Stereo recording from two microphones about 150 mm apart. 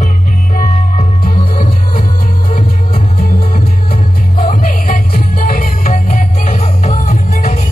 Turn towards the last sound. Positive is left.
turn(degrees=55)  # may be behind; listen again after turning